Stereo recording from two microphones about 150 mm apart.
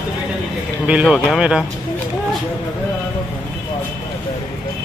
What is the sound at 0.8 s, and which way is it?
Speech, 5° right (ahead or behind).